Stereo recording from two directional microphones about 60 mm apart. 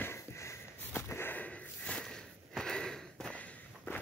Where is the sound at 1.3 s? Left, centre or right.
Left.